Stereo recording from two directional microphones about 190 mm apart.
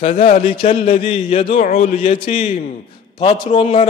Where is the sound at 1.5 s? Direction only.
45° left (ahead or behind).